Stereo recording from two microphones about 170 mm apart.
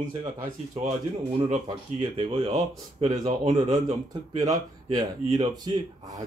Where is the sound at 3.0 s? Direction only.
20° right (ahead or behind).